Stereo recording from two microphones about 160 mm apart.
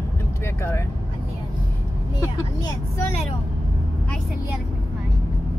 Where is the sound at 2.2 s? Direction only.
15° left (ahead or behind).